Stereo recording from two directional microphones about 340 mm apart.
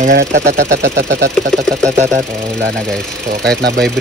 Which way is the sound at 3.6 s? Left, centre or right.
Right.